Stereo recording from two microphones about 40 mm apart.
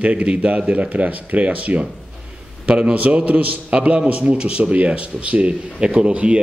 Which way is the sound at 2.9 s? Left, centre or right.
Right.